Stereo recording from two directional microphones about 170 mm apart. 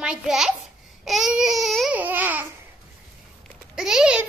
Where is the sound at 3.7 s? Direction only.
5° right (ahead or behind).